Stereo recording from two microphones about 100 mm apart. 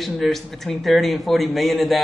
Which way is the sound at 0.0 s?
Centre (ahead or behind).